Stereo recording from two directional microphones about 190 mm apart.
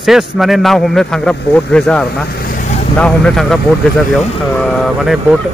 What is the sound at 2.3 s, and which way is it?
Vehicle, 50° left (ahead or behind).